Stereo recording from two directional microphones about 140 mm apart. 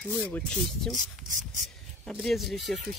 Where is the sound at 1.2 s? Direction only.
65° right (ahead or behind).